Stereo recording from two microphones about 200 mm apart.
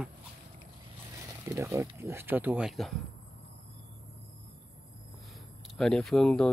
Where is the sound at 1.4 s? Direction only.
15° right (ahead or behind).